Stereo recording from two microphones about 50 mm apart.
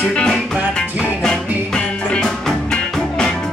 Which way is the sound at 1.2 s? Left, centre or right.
Centre.